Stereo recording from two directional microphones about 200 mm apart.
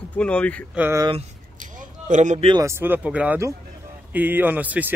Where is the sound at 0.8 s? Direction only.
10° right (ahead or behind).